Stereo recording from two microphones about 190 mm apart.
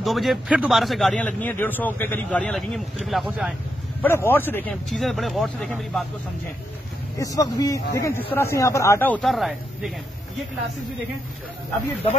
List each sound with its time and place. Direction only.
0.0 s a man's voice: centre (ahead or behind)
4.0 s a man's voice: 10° left (ahead or behind)
7.2 s speech: 20° left (ahead or behind); by 9.9 s centre (ahead or behind)